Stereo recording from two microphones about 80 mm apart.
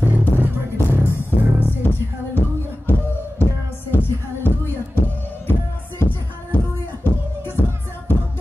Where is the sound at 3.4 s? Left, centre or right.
Left.